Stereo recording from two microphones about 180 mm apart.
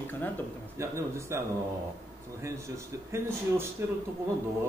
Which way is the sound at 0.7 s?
15° right (ahead or behind).